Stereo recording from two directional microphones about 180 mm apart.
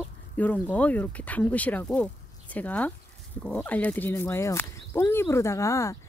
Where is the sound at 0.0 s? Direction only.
10° left (ahead or behind).